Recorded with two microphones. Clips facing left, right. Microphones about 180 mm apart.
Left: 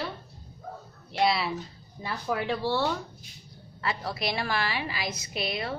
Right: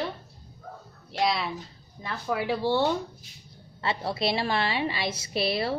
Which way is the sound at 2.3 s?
10° right (ahead or behind).